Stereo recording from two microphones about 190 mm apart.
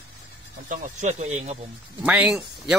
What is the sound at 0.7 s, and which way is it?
Speech, 40° right (ahead or behind).